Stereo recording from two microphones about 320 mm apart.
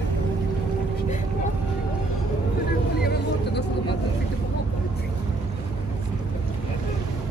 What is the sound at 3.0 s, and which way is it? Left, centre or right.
Vehicle, left.